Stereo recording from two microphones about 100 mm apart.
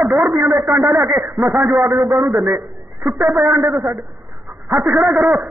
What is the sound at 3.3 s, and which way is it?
Speech, 20° right (ahead or behind).